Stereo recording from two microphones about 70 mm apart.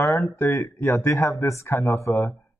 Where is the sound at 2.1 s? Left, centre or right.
Left.